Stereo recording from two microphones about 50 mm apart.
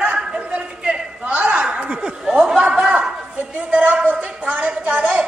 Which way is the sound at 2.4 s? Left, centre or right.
Centre.